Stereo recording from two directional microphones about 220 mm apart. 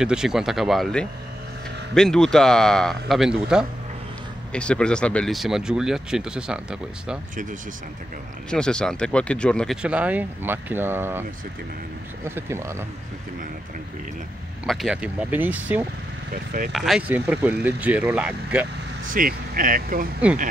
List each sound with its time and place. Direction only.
0.0 s speech: 5° right (ahead or behind)
8.5 s speech: 5° left (ahead or behind)
12.3 s speech: 10° right (ahead or behind)
14.7 s speech: centre (ahead or behind)
19.0 s speech: 40° right (ahead or behind)